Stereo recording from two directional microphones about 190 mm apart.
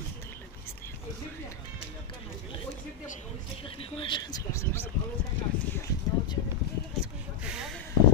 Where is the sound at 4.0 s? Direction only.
25° left (ahead or behind).